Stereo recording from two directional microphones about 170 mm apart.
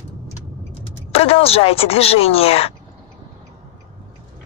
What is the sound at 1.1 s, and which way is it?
Speech, 35° left (ahead or behind).